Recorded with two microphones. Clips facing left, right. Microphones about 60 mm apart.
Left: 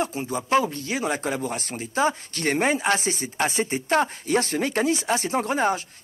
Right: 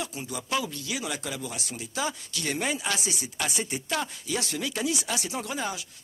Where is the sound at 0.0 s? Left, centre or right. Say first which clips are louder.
Left 8 dB; left.